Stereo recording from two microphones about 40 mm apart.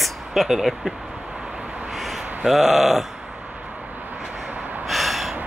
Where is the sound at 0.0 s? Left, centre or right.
Centre.